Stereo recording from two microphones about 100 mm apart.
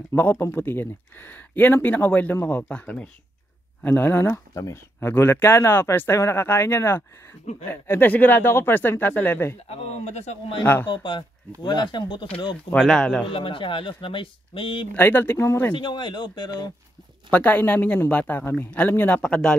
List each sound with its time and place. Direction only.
0.1 s speech: 20° left (ahead or behind)
10.6 s speech: 20° left (ahead or behind)
10.9 s speech: 50° left (ahead or behind)
12.7 s speech: centre (ahead or behind)
13.3 s speech: 60° left (ahead or behind)
15.0 s speech: 20° left (ahead or behind)
15.7 s speech: 50° left (ahead or behind)
17.3 s speech: 15° left (ahead or behind)